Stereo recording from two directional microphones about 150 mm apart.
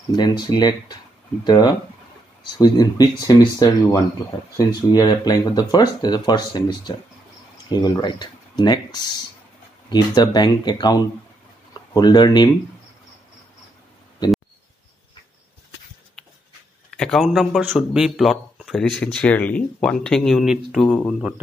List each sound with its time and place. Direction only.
0.1 s speech: 30° left (ahead or behind)
16.9 s speech: 5° left (ahead or behind)